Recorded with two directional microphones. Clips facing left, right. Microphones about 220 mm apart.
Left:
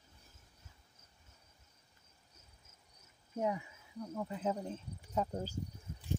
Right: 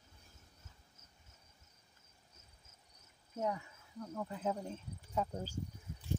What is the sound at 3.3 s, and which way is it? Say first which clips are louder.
Speech: left 2 dB; 15° left (ahead or behind).